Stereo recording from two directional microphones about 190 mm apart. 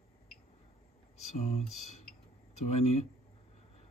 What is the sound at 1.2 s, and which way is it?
Speech, 35° left (ahead or behind).